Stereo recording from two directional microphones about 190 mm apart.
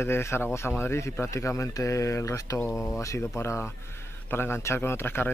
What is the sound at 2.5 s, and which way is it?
Speech, 5° left (ahead or behind).